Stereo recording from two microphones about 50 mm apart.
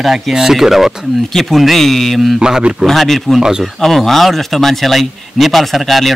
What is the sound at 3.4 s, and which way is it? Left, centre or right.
Speech, centre.